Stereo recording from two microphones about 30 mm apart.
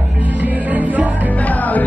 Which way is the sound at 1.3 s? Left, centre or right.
Left.